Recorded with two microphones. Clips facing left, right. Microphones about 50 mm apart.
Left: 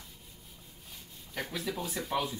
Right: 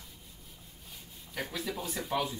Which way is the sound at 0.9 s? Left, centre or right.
Centre.